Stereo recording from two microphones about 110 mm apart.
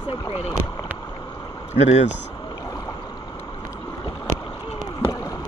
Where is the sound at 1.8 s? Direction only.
80° left.